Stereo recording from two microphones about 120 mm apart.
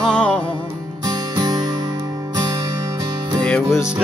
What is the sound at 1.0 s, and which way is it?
Music, 35° right (ahead or behind).